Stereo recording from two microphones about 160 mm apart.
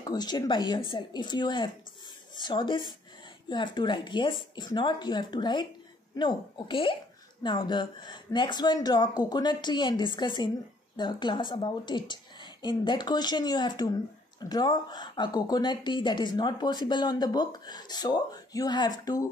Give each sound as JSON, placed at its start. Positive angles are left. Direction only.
{"t": 0.0, "sound": "speech", "side_deg": 25}